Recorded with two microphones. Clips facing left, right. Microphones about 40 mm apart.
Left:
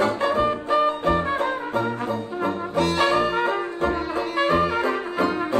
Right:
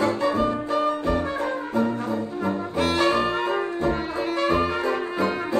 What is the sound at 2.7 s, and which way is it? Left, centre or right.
Brass instrument, centre.